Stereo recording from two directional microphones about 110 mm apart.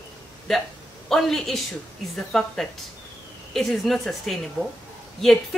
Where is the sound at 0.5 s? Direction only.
Centre (ahead or behind).